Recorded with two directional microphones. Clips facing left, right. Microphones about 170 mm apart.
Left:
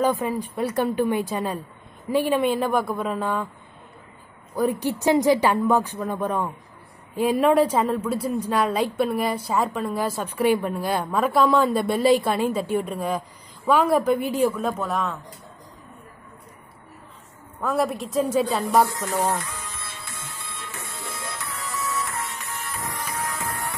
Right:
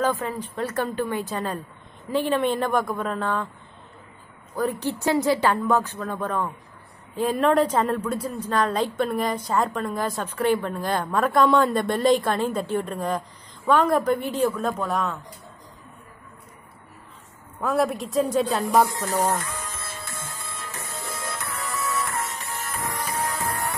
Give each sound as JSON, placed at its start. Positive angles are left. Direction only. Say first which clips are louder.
{"t": 0.0, "sound": "a woman's voice", "louder": "left 2 dB", "side_deg": 15}
{"t": 4.6, "sound": "a woman's voice", "louder": "left 3 dB", "side_deg": 10}
{"t": 17.6, "sound": "a woman's voice", "louder": "right 1 dB", "side_deg": 0}
{"t": 19.0, "sound": "printer", "louder": "right 1 dB", "side_deg": -40}